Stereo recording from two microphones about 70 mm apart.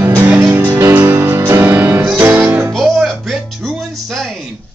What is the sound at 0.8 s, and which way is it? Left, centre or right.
Music, right.